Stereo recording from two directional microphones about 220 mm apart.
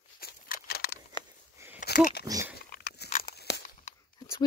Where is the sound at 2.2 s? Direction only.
15° right (ahead or behind).